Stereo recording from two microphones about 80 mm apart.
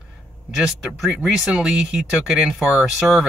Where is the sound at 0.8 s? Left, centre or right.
Centre.